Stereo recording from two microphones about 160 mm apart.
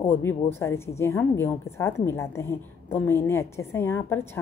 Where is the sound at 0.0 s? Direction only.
15° left (ahead or behind).